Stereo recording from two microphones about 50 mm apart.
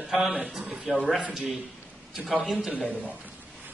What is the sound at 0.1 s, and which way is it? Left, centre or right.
A man's voice, centre.